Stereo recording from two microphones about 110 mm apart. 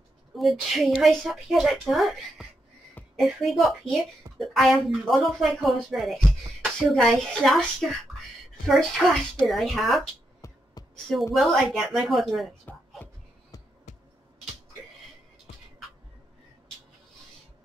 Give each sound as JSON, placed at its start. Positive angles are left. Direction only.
{"t": 0.4, "sound": "a woman's voice", "side_deg": 0}
{"t": 10.4, "sound": "music", "side_deg": 35}
{"t": 11.3, "sound": "a woman's voice", "side_deg": 0}
{"t": 12.7, "sound": "music", "side_deg": 15}
{"t": 13.9, "sound": "music", "side_deg": 90}